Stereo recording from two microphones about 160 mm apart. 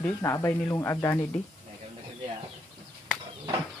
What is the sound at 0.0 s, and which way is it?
Speech, 15° left (ahead or behind).